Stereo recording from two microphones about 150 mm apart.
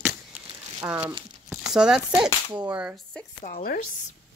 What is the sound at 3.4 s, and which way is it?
Speech, 70° left (ahead or behind).